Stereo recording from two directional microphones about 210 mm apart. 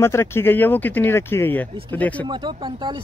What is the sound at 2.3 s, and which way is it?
Speech, 20° right (ahead or behind).